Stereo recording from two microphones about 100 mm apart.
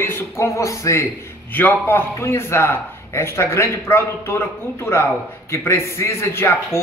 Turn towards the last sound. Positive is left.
turn(degrees=25)  # may be behind; listen again after turning